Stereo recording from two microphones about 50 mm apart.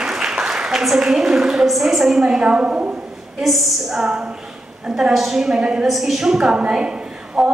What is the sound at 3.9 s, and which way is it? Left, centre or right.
A woman's voice, centre.